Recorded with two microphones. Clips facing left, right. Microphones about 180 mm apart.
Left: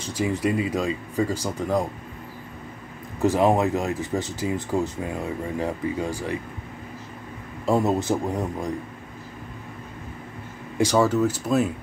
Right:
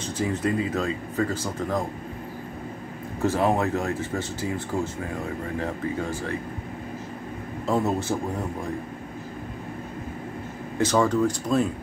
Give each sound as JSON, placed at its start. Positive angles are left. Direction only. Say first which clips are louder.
{"t": 0.2, "sound": "speech", "louder": "left 2 dB", "side_deg": 10}
{"t": 3.2, "sound": "speech", "louder": "left 3 dB", "side_deg": 15}
{"t": 7.6, "sound": "speech", "louder": "left 3 dB", "side_deg": 15}
{"t": 10.8, "sound": "speech", "louder": "left 1 dB", "side_deg": 10}